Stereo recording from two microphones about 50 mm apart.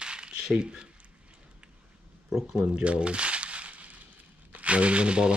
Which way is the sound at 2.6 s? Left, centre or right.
Right.